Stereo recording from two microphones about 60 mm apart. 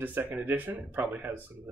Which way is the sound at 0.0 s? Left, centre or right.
Right.